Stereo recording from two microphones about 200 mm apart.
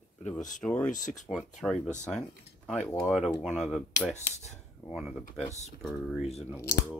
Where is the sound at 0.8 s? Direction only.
40° left (ahead or behind).